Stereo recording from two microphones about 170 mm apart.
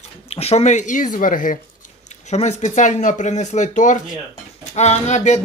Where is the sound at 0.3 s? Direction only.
35° left (ahead or behind).